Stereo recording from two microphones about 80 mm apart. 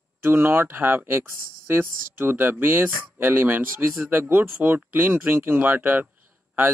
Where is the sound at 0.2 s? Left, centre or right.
Right.